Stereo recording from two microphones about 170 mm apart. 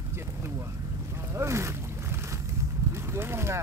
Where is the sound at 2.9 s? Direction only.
15° right (ahead or behind).